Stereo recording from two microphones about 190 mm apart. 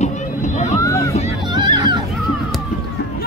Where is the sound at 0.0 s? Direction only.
40° left (ahead or behind).